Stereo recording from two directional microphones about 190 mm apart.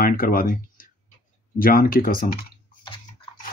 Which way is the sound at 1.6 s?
50° left (ahead or behind).